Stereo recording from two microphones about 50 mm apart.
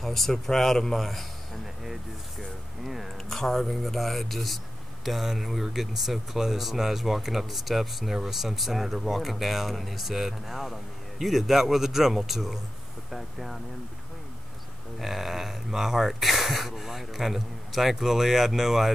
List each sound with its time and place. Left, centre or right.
0.0 s speech: centre
2.8 s speech: centre
15.0 s speech: centre